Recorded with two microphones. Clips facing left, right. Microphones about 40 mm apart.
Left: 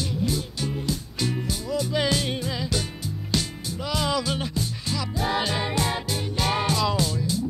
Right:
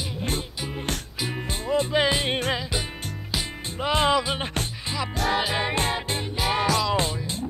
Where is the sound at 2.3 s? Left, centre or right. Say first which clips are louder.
Right 4 dB; right.